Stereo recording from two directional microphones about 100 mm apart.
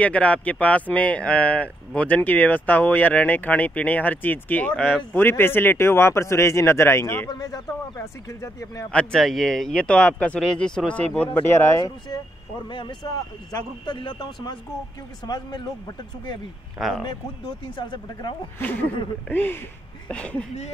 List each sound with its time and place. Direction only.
0.0 s speech: 15° left (ahead or behind)
7.2 s speech: 40° left (ahead or behind)
8.9 s speech: 5° left (ahead or behind)
11.3 s speech: 25° left (ahead or behind)
12.6 s speech: 50° left (ahead or behind)
16.7 s speech: centre (ahead or behind)
17.0 s speech: 50° left (ahead or behind)
18.6 s speech: 20° left (ahead or behind)